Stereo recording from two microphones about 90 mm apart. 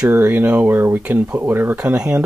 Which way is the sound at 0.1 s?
20° right (ahead or behind).